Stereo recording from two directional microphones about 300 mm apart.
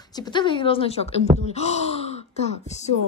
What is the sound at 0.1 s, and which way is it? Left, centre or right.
Speech, centre.